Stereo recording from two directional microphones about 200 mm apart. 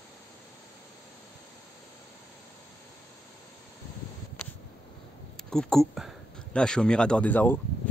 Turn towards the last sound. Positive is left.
turn(degrees=10)  # may be behind; listen again after turning